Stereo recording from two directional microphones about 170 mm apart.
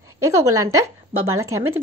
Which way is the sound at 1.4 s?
15° right (ahead or behind).